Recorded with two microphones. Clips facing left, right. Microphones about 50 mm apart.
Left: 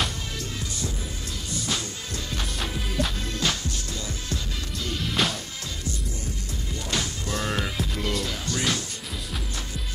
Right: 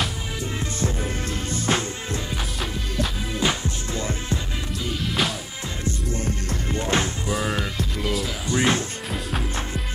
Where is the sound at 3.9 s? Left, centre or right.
Right.